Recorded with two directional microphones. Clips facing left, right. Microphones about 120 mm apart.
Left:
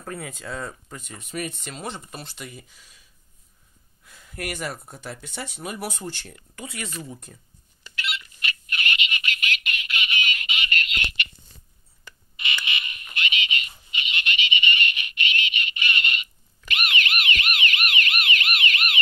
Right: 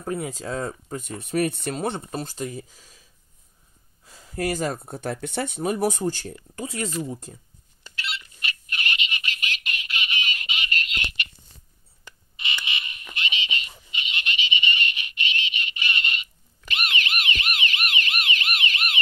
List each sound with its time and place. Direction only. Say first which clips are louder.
0.0 s speech: right 6 dB; 20° right (ahead or behind)
0.3 s speech: right 4 dB; 35° right (ahead or behind)
1.3 s speech: right 8 dB; 60° right (ahead or behind)
2.0 s speech: right 8 dB; 35° right (ahead or behind)
5.0 s speech: right 8 dB; 55° right (ahead or behind)
5.6 s speech: right 9 dB; 40° right (ahead or behind)
7.8 s telephone: left 1 dB; 35° right (ahead or behind)
12.0 s a sound: left 1 dB; 25° right (ahead or behind)
15.0 s telephone: left 2 dB; 30° right (ahead or behind)
16.6 s siren: left 1 dB; 30° right (ahead or behind)